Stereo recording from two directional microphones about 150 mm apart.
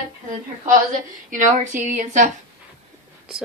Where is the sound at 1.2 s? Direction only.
60° right (ahead or behind).